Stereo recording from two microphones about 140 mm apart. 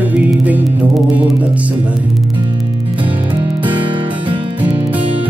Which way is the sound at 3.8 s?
35° right (ahead or behind).